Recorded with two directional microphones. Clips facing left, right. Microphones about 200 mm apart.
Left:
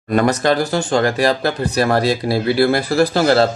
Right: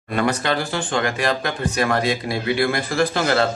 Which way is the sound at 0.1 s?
40° left (ahead or behind).